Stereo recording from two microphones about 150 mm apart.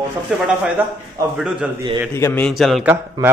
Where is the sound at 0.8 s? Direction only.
15° right (ahead or behind).